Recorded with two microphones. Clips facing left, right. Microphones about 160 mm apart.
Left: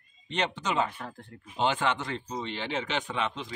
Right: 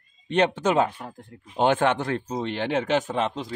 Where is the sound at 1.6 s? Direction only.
50° right (ahead or behind).